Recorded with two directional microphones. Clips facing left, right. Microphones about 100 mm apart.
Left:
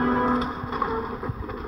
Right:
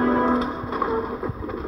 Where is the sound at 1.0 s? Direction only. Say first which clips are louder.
Right 3 dB; 35° right (ahead or behind).